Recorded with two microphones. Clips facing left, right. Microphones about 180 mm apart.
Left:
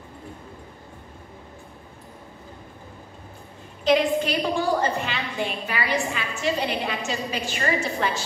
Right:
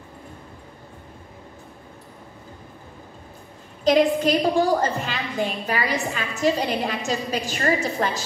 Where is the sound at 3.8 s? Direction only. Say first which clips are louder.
Right 3 dB; 40° right (ahead or behind).